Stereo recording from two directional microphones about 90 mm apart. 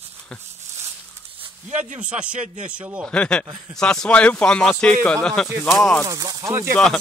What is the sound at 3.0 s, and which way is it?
Speech, 10° left (ahead or behind).